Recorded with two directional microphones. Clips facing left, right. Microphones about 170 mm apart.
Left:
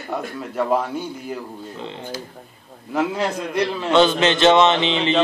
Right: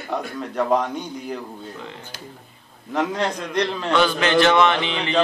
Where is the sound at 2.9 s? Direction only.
5° left (ahead or behind).